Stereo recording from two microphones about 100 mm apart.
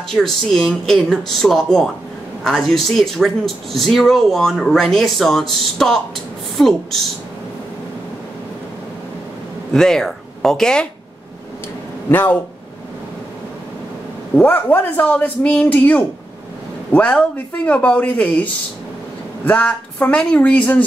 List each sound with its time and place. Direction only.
0.1 s speech: 5° left (ahead or behind)
9.7 s speech: 5° left (ahead or behind)
12.1 s speech: 20° left (ahead or behind)
14.3 s a man's voice: 15° left (ahead or behind)